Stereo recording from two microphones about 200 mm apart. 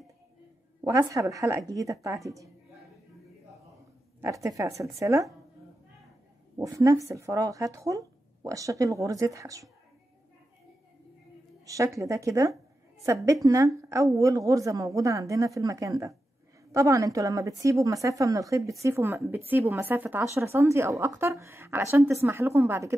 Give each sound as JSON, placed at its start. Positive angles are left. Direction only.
{"t": 0.8, "sound": "speech", "side_deg": -15}
{"t": 4.2, "sound": "speech", "side_deg": -15}
{"t": 6.5, "sound": "speech", "side_deg": -15}
{"t": 11.6, "sound": "speech", "side_deg": -15}